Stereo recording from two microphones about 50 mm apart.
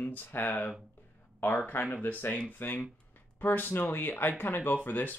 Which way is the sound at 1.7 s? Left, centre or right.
Left.